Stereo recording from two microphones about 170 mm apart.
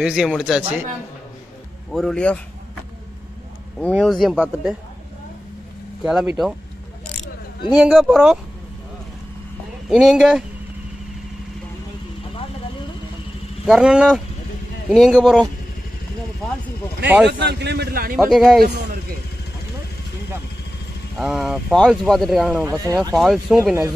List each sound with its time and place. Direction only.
0.0 s speech: 5° right (ahead or behind)
1.9 s speech: centre (ahead or behind)
4.0 s speech: centre (ahead or behind)
6.0 s speech: 5° right (ahead or behind)
7.7 s speech: 5° right (ahead or behind)
9.8 s speech: centre (ahead or behind)
13.7 s speech: 5° right (ahead or behind)
17.3 s a man's voice: 90° right; by 18.1 s 65° right (ahead or behind)
18.1 s speech: centre (ahead or behind)
21.2 s speech: 5° right (ahead or behind)
23.6 s speech: 10° right (ahead or behind)